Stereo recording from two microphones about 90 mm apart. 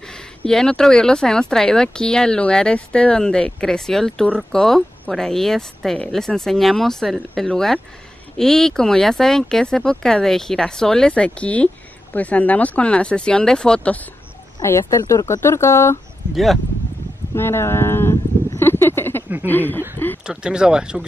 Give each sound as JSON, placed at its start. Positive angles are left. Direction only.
{"t": 0.5, "sound": "speech", "side_deg": 5}
{"t": 14.6, "sound": "speech", "side_deg": 35}
{"t": 17.3, "sound": "speech", "side_deg": 30}
{"t": 18.6, "sound": "a sound", "side_deg": 25}
{"t": 19.4, "sound": "speech", "side_deg": 20}
{"t": 20.2, "sound": "speech", "side_deg": -10}